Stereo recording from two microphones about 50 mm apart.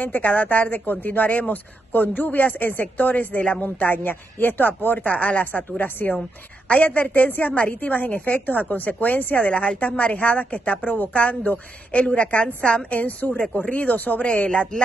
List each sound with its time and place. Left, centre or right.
0.0 s a woman's voice: left
3.6 s a woman's voice: left
9.4 s a woman's voice: left